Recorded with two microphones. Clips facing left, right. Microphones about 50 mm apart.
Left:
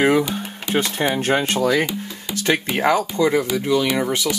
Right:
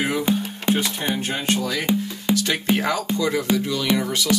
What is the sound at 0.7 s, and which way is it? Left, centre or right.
Speech, left.